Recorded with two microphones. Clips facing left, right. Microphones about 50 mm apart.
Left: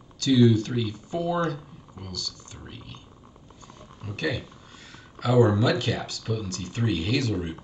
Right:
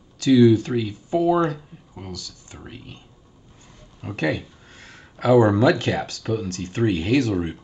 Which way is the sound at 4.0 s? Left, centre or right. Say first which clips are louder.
Right 5 dB; right.